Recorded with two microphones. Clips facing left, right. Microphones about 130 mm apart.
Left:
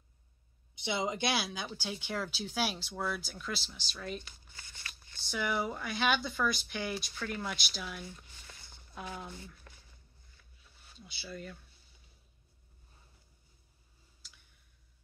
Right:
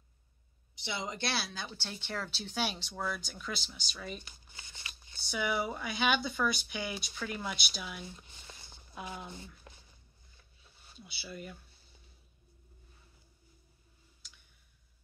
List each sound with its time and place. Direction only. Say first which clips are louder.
0.8 s speech: left 4 dB; 20° left (ahead or behind); by 4.2 s centre (ahead or behind)
4.2 s crumpling: even; 20° right (ahead or behind)
5.2 s speech: even; centre (ahead or behind)
8.0 s a sound: even; 20° right (ahead or behind)
11.0 s speech: even; 5° right (ahead or behind)